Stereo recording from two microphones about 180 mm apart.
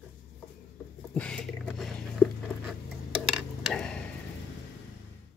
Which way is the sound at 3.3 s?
5° left (ahead or behind).